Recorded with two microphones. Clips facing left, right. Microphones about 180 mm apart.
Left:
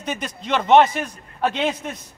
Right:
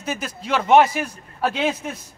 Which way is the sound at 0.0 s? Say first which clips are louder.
Even; 5° right (ahead or behind).